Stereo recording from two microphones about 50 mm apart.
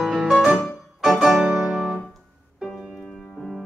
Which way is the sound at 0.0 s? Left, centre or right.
Centre.